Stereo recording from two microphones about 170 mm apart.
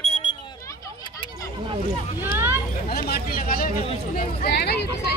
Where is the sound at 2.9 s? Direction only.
60° left (ahead or behind).